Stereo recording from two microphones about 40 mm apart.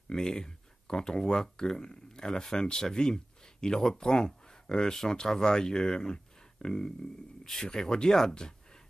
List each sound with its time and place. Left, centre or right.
0.1 s speech: centre